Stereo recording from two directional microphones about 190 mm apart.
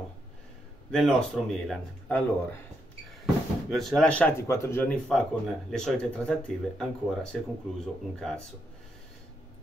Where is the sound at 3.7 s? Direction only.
Centre (ahead or behind).